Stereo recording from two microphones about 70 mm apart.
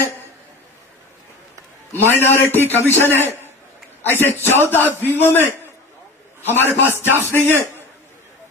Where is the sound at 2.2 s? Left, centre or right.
Left.